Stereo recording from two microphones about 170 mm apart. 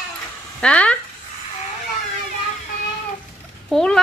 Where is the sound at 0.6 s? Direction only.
5° left (ahead or behind).